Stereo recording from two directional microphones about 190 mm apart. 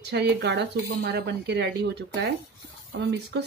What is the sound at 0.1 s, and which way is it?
Speech, 60° right (ahead or behind).